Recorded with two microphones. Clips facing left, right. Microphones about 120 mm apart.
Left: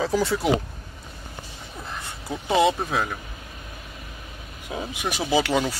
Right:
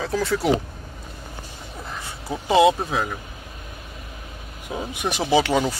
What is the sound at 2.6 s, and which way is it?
Speech, centre (ahead or behind).